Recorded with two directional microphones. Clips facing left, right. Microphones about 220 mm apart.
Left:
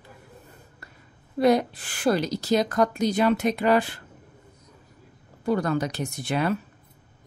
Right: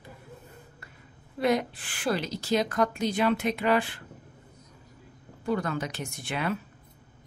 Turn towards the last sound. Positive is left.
turn(degrees=40)  # may be behind; listen again after turning